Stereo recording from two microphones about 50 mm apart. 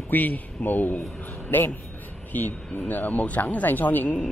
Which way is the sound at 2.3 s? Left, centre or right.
Left.